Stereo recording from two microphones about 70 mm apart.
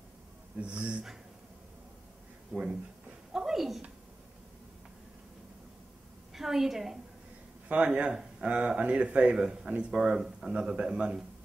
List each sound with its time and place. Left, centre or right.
0.6 s speech: centre
2.5 s speech: centre
3.3 s a sound: centre
6.3 s a woman's voice: centre
7.6 s speech: centre